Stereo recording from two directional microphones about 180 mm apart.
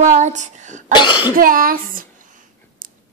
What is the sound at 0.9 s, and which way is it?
Cough, 25° left (ahead or behind).